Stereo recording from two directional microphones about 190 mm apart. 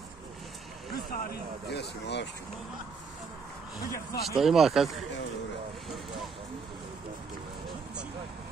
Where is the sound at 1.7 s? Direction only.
65° left (ahead or behind).